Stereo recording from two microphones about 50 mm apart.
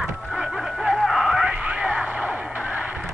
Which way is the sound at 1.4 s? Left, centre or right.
Right.